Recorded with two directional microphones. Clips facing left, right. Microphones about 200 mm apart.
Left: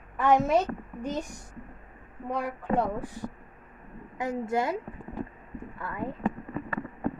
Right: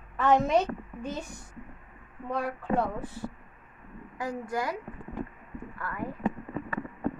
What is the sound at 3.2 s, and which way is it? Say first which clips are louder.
A woman's voice: left 1 dB; 15° left (ahead or behind).